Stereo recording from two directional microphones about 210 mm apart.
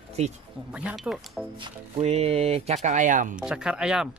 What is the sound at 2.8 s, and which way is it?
Speech, 35° right (ahead or behind).